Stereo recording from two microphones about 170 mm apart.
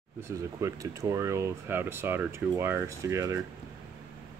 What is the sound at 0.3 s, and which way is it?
Speech, 20° right (ahead or behind).